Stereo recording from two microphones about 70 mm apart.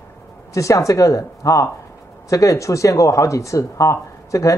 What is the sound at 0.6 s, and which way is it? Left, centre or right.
Speech, left.